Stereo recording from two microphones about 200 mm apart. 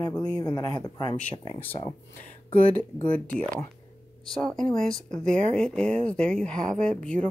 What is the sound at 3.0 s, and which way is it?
Speech, 5° left (ahead or behind).